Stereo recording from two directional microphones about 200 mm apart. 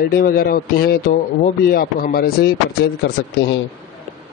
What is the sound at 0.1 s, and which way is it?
A man's voice, 50° left (ahead or behind).